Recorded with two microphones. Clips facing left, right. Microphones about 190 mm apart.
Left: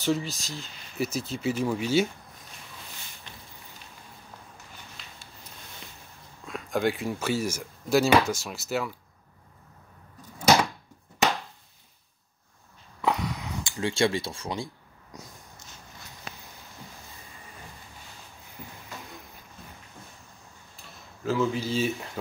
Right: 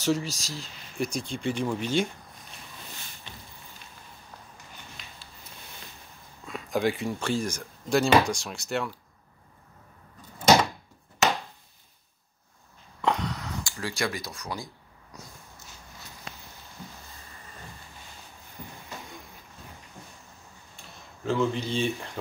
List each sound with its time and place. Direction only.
0.0 s speech: centre (ahead or behind)
6.4 s speech: centre (ahead or behind)
13.0 s a sound: 10° left (ahead or behind); by 14.7 s 30° left (ahead or behind)
20.7 s speech: centre (ahead or behind)